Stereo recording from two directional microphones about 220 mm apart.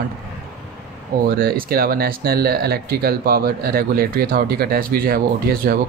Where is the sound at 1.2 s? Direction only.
45° right (ahead or behind).